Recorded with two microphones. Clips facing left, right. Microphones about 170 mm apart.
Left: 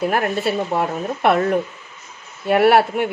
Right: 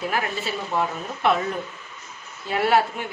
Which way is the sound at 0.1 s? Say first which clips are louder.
Left 7 dB; 60° left (ahead or behind).